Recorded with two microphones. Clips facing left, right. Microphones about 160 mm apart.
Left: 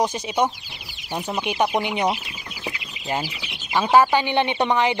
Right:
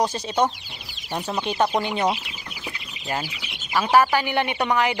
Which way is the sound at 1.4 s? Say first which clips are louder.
Even; 15° left (ahead or behind).